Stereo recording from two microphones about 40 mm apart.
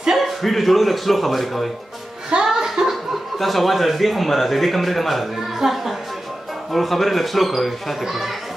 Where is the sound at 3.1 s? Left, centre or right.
Centre.